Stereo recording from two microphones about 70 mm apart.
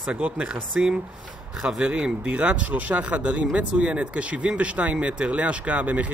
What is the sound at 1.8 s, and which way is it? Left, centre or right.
Speech, centre.